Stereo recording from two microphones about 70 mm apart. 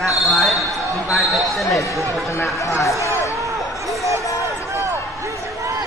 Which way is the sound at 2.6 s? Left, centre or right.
Left.